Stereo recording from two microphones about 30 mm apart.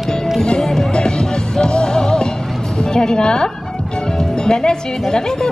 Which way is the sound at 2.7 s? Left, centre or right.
Left.